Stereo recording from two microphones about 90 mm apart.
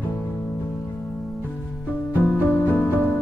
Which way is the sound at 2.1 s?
20° left (ahead or behind).